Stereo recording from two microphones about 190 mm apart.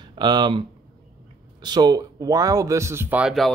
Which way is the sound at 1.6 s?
20° right (ahead or behind).